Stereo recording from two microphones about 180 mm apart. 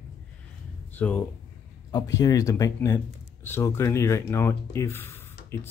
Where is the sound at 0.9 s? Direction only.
10° left (ahead or behind).